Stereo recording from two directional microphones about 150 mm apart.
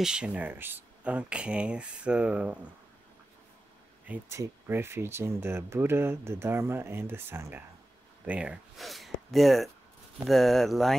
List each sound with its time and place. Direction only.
0.0 s speech: 5° right (ahead or behind)
4.1 s speech: 15° right (ahead or behind); by 11.0 s centre (ahead or behind)